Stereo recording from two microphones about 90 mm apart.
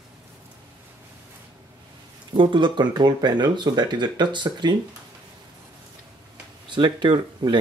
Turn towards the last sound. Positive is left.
turn(degrees=-60)  # may be behind; listen again after turning